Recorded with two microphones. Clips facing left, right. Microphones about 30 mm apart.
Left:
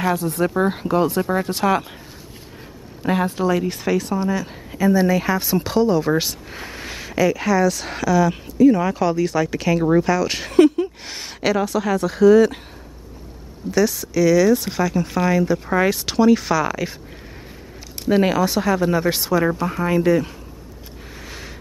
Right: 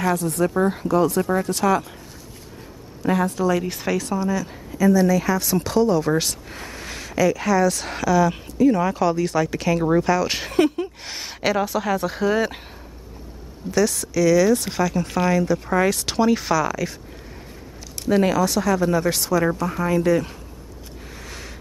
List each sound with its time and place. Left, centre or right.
0.0 s speech: left
0.6 s speech: left
3.0 s speech: left
3.4 s speech: centre
4.2 s speech: left; by 12.5 s centre
13.7 s speech: centre
16.2 s speech: centre
16.5 s speech: centre
18.0 s speech: centre
21.2 s a sound: centre